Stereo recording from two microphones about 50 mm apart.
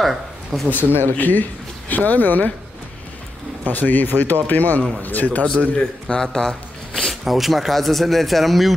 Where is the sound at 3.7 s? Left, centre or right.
Left.